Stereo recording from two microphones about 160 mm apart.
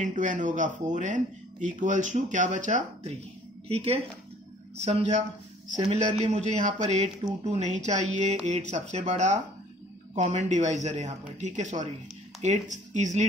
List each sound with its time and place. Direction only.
0.0 s speech: 50° right (ahead or behind)